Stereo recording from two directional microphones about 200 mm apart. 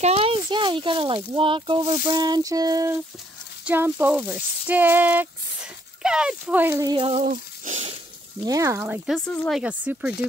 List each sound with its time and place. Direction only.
0.0 s speech: 30° right (ahead or behind)
8.5 s speech: 15° right (ahead or behind); by 9.6 s 5° left (ahead or behind)
9.6 s speech: 5° right (ahead or behind)